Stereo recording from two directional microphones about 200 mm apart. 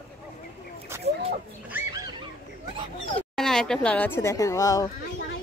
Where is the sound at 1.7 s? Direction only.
20° right (ahead or behind).